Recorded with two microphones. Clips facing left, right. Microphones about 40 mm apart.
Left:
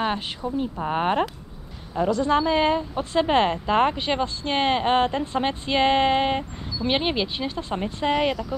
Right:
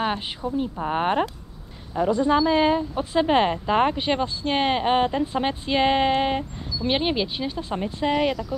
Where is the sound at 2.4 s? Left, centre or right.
Centre.